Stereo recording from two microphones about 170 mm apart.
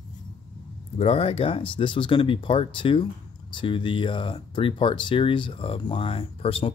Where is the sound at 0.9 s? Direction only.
35° left (ahead or behind).